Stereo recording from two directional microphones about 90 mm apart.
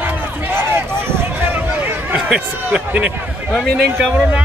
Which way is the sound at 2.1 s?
15° right (ahead or behind).